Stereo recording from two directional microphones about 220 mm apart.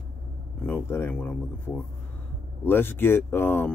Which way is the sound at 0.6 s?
10° left (ahead or behind).